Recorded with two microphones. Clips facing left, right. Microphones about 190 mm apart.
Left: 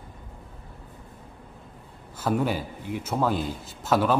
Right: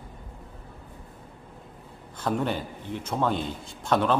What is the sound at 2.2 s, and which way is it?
A man's voice, 5° left (ahead or behind).